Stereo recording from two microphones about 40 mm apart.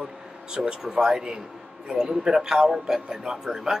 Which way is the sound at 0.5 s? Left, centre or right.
Centre.